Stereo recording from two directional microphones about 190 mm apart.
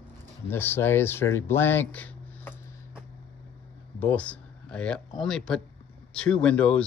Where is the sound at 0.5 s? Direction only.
10° left (ahead or behind).